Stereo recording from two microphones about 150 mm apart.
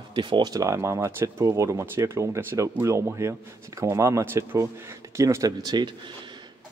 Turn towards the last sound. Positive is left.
turn(degrees=-30)  # may be behind; listen again after turning